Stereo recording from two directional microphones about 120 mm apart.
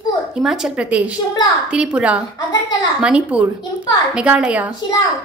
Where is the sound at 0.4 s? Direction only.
5° right (ahead or behind).